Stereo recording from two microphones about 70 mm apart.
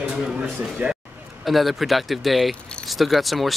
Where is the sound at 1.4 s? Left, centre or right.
Centre.